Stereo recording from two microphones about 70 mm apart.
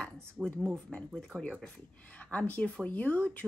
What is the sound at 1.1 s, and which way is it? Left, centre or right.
Speech, centre.